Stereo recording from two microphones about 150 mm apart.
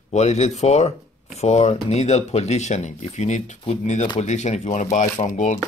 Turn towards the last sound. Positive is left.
turn(degrees=55)  # may be behind; listen again after turning